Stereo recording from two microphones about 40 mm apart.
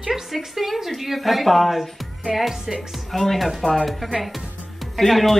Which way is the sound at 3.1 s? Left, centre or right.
Centre.